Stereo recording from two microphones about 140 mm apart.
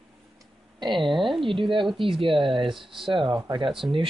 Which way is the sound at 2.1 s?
40° right (ahead or behind).